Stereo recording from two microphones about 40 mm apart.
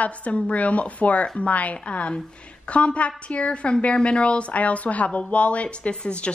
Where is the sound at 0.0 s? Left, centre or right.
Left.